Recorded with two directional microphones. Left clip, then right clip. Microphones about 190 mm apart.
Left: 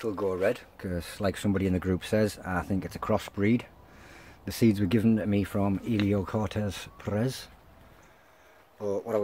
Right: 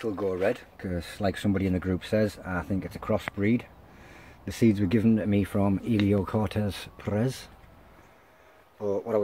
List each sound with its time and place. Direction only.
0.0 s speech: 5° left (ahead or behind); by 3.6 s 20° left (ahead or behind)
4.1 s speech: 10° left (ahead or behind)
8.7 s speech: 5° right (ahead or behind)